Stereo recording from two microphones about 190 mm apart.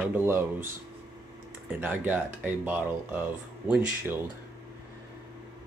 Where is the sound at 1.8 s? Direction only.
10° right (ahead or behind).